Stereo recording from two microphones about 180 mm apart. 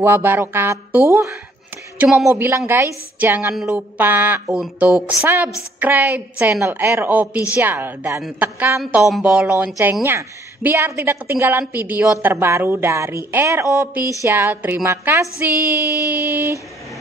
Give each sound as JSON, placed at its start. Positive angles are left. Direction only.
{"t": 0.0, "sound": "a woman's voice", "side_deg": -10}
{"t": 2.0, "sound": "speech", "side_deg": -5}
{"t": 2.2, "sound": "a woman's voice", "side_deg": -15}